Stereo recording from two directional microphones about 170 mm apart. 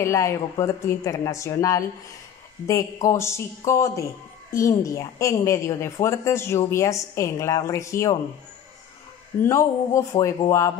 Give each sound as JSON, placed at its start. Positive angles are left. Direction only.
{"t": 0.0, "sound": "a woman's voice", "side_deg": 15}
{"t": 9.4, "sound": "a woman's voice", "side_deg": 15}